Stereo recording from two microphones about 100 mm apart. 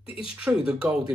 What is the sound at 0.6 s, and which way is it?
Speech, 10° right (ahead or behind).